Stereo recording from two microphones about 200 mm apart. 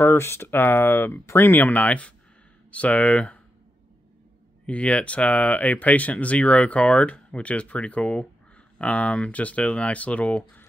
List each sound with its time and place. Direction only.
0.0 s speech: 10° left (ahead or behind)
4.6 s speech: 5° left (ahead or behind)